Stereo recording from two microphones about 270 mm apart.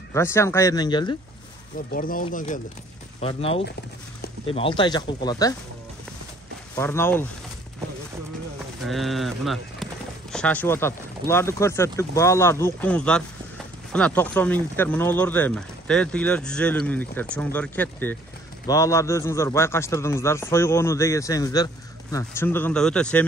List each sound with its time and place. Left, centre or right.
0.1 s a man's voice: centre
1.9 s a man's voice: left; by 5.5 s centre
6.7 s a man's voice: centre
8.8 s a man's voice: centre